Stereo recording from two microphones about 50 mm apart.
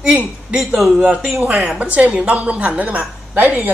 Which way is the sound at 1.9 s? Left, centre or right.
Right.